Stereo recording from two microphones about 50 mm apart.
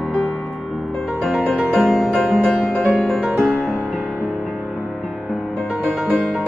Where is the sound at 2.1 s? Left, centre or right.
Centre.